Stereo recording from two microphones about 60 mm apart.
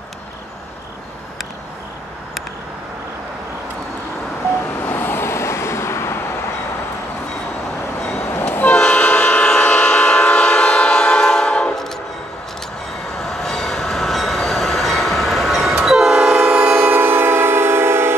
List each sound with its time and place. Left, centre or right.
4.8 s vehicle: left
8.0 s vehicle: centre
8.3 s train: left
8.7 s train: centre
13.2 s train: centre
16.4 s train: right